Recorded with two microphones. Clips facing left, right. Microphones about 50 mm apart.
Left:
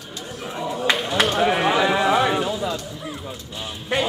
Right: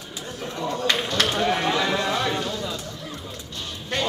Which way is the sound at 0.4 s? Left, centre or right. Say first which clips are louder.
Left 1 dB; centre.